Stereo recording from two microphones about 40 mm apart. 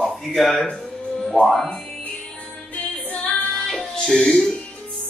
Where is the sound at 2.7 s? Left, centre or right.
Left.